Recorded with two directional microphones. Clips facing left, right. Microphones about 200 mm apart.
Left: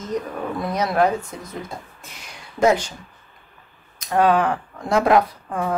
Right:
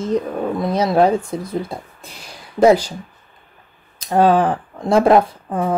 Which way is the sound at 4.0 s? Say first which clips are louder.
Right 4 dB; 30° right (ahead or behind).